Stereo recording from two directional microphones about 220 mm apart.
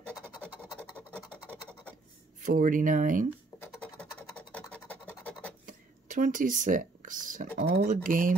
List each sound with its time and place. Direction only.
1.5 s scratch: 10° right (ahead or behind)
2.4 s speech: 35° right (ahead or behind)
4.5 s scratch: 5° left (ahead or behind)
5.7 s speech: 35° right (ahead or behind)